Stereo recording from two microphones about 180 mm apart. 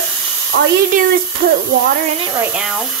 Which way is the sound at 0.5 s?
90° right.